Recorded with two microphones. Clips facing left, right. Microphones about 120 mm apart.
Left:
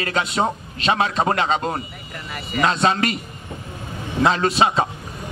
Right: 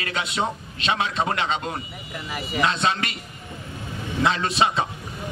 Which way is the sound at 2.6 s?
40° left (ahead or behind).